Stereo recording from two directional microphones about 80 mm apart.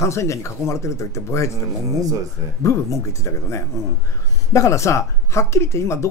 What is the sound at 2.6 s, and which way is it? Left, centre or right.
Speech, left.